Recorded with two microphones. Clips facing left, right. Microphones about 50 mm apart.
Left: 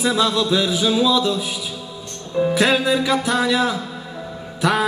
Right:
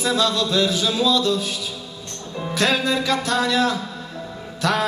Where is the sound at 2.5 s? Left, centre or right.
Centre.